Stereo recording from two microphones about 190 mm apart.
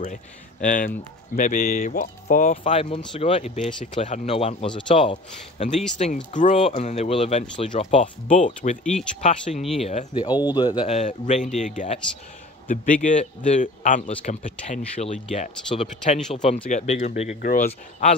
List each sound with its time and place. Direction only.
0.0 s speech: 45° left (ahead or behind)
9.6 s speech: centre (ahead or behind)
9.8 s speech: 30° left (ahead or behind)
17.4 s speech: 50° left (ahead or behind)